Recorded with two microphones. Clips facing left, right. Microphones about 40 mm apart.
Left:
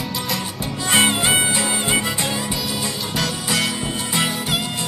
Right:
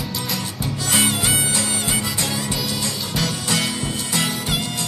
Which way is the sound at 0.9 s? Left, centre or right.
Left.